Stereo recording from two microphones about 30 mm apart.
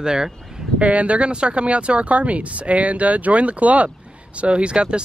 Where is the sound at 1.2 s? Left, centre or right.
Right.